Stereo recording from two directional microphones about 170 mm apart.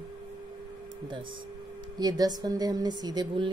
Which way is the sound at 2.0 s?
25° right (ahead or behind).